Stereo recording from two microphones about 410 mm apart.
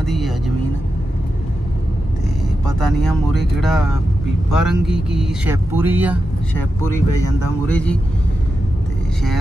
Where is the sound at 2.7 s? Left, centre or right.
Centre.